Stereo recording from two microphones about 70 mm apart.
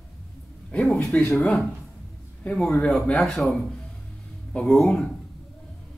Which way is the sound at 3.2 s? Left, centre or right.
Centre.